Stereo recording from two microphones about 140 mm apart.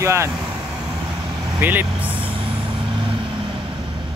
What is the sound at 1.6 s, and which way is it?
Speech, 10° right (ahead or behind).